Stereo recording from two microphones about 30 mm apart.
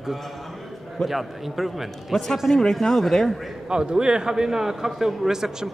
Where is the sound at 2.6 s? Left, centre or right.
Centre.